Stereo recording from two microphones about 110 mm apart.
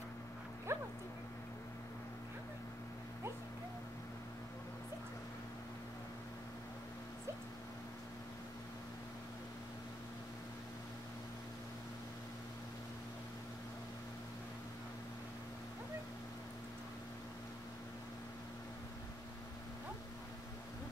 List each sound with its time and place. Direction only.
0.7 s dog: 25° right (ahead or behind)